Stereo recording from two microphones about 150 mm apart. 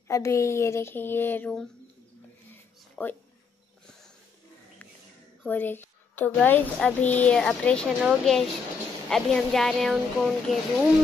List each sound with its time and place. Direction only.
0.1 s speech: 20° left (ahead or behind)
2.5 s a sound: 15° left (ahead or behind)
5.4 s a woman's voice: 10° left (ahead or behind)